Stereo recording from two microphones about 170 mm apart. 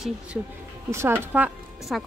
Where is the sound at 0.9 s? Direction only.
15° right (ahead or behind).